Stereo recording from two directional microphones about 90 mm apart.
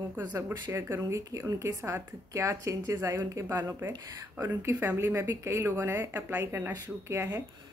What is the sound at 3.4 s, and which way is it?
A woman's voice, 25° right (ahead or behind).